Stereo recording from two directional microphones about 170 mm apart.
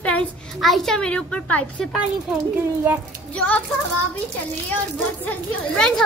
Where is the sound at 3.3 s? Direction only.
5° left (ahead or behind).